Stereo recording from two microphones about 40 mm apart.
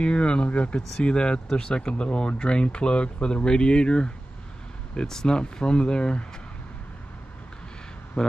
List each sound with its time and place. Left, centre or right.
0.0 s speech: left
8.2 s speech: centre